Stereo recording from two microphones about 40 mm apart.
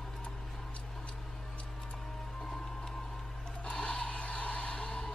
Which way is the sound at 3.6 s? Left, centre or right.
Centre.